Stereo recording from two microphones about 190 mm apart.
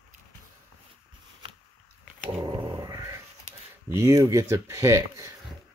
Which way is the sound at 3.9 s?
15° right (ahead or behind).